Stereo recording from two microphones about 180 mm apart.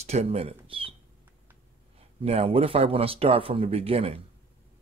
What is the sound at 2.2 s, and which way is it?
Speech, 35° right (ahead or behind).